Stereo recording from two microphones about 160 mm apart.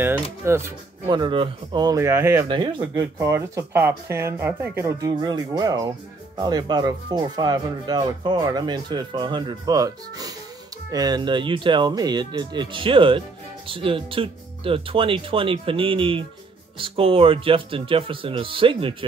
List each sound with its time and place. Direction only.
0.0 s speech: 15° right (ahead or behind)
1.0 s speech: 30° right (ahead or behind)
2.4 s speech: 30° right (ahead or behind)
5.1 s speech: 25° right (ahead or behind)